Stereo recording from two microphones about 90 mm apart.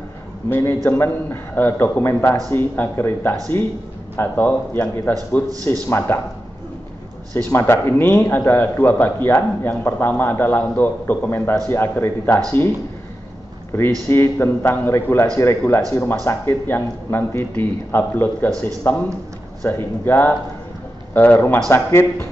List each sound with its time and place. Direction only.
0.5 s speech: 25° left (ahead or behind)
7.4 s speech: 30° left (ahead or behind)
14.0 s speech: 30° left (ahead or behind)